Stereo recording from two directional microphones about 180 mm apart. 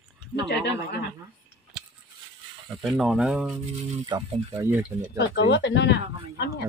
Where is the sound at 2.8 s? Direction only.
Centre (ahead or behind).